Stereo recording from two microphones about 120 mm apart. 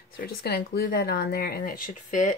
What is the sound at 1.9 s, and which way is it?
Speech, 90° left.